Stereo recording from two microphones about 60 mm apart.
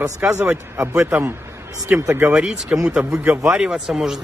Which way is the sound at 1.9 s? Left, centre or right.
Right.